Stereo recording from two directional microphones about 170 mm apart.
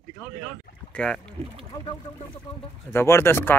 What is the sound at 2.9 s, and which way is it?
Speech, 15° left (ahead or behind).